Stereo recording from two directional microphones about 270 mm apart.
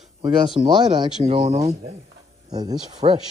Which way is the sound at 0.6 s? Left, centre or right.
Centre.